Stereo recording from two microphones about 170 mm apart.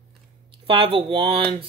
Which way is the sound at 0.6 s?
30° right (ahead or behind).